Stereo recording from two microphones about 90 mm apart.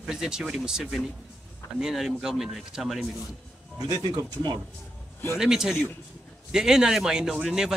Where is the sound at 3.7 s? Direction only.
45° right (ahead or behind).